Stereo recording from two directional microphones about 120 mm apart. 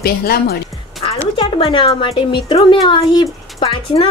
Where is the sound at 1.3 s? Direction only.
45° left (ahead or behind).